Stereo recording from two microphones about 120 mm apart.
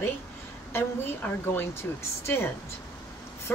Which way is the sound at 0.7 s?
20° left (ahead or behind).